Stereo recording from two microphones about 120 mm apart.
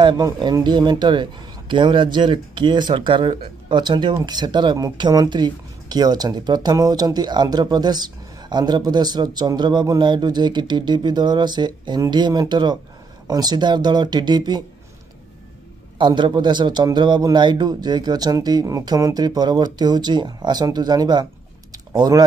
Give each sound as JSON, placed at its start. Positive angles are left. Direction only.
{"t": 0.0, "sound": "speech", "side_deg": -35}
{"t": 16.0, "sound": "speech", "side_deg": -40}
{"t": 21.7, "sound": "typing", "side_deg": -35}